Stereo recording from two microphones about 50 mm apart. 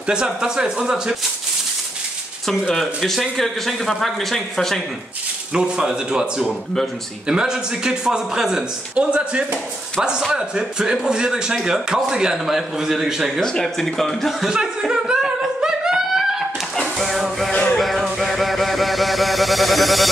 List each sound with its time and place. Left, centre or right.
0.0 s a man's voice: centre
2.7 s speech: centre
5.5 s a man's voice: centre
13.4 s speech: centre
14.9 s humming: centre
16.7 s a sound: centre
17.5 s music: left
17.7 s music: centre